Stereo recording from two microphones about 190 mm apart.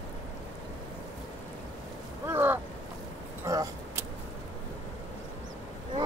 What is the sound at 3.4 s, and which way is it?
Vehicle, 15° right (ahead or behind).